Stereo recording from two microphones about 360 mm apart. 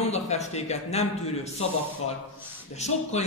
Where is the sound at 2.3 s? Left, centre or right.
Centre.